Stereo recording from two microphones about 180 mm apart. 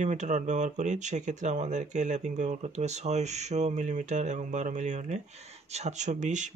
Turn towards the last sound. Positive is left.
turn(degrees=-45)  # may be behind; listen again after turning